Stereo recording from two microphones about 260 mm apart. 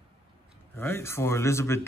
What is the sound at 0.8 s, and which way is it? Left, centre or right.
Speech, centre.